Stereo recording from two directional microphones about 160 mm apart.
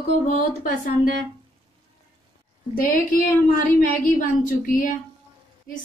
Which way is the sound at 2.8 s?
60° left (ahead or behind).